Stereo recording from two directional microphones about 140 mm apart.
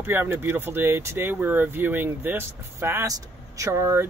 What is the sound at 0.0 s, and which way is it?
Speech, 15° right (ahead or behind).